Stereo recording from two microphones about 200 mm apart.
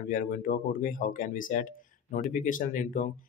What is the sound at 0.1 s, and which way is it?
Speech, 45° left (ahead or behind).